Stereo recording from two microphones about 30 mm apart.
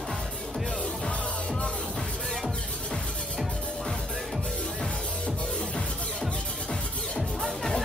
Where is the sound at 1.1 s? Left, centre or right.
Left.